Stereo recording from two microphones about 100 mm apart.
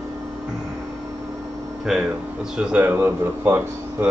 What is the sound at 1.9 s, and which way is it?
Speech, 5° right (ahead or behind).